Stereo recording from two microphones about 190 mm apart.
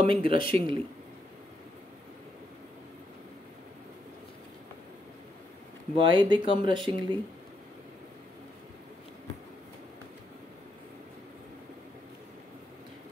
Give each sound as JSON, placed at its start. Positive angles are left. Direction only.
{"t": 0.1, "sound": "speech", "side_deg": -30}
{"t": 5.9, "sound": "speech", "side_deg": -25}